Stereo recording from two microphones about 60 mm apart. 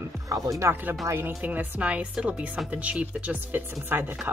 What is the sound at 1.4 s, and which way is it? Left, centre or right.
Speech, right.